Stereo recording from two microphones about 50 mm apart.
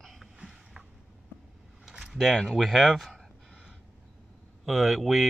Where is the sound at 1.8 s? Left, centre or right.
Centre.